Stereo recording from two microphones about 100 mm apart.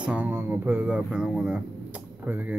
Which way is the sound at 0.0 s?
15° right (ahead or behind).